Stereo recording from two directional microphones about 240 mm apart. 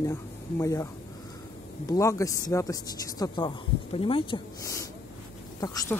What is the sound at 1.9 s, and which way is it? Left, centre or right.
Speech, centre.